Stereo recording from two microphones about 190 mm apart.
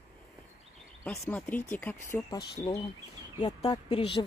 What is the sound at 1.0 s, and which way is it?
A woman's voice, 10° left (ahead or behind).